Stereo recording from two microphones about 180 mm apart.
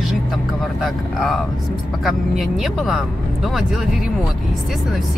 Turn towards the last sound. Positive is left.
turn(degrees=0)  # may be behind; listen again after turning